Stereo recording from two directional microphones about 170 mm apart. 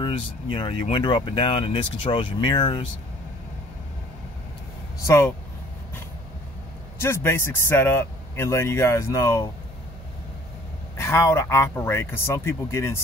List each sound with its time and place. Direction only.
0.0 s speech: 30° left (ahead or behind)
5.0 s a man's voice: 15° left (ahead or behind)
7.0 s a man's voice: 15° left (ahead or behind)
11.0 s a man's voice: 15° left (ahead or behind)